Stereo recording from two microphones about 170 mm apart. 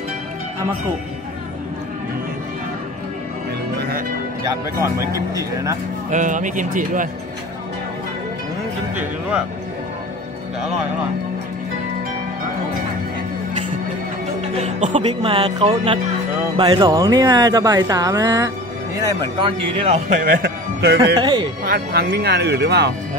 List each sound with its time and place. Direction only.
5.3 s speech: 20° right (ahead or behind)
6.0 s a man's voice: 45° right (ahead or behind)
14.6 s a man's voice: 45° right (ahead or behind)
15.0 s speech: 35° right (ahead or behind)
20.2 s a man's voice: 60° right (ahead or behind)
21.2 s speech: 25° right (ahead or behind)
21.6 s speech: 60° right (ahead or behind); by 22.9 s 85° right